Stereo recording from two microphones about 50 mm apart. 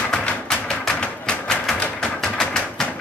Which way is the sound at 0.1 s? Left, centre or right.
Centre.